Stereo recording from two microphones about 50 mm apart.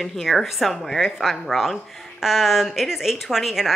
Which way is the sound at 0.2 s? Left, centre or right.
Centre.